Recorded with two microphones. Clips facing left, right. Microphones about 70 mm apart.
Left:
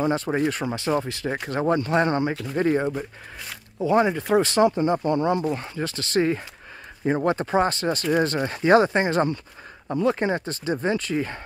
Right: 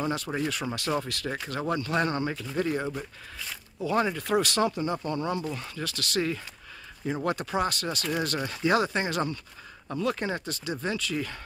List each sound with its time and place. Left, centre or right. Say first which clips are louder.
0.0 s speech: left 7 dB; left
0.7 s speech: left 5 dB; left